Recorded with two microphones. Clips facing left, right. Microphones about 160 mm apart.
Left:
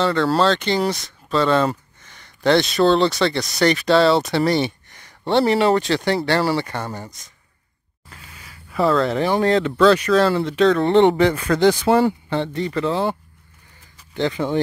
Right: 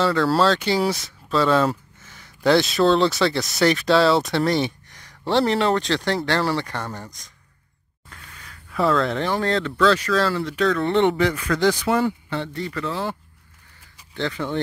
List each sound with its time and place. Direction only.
0.0 s speech: 5° right (ahead or behind)
8.1 s a sound: 10° left (ahead or behind)
9.3 s speech: 15° left (ahead or behind)
14.1 s speech: 15° left (ahead or behind)